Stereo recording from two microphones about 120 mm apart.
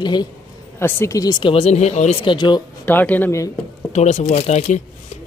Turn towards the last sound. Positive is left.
turn(degrees=70)  # may be behind; listen again after turning